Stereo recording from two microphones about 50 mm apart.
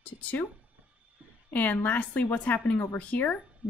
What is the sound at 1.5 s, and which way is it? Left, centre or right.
Speech, left.